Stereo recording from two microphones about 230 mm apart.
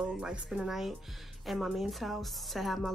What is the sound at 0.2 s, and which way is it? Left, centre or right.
A woman's voice, centre.